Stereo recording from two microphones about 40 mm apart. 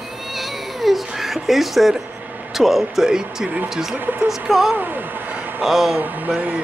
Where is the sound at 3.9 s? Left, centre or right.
Right.